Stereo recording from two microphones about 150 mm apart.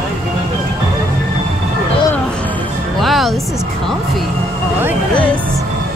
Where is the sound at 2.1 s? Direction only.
10° left (ahead or behind).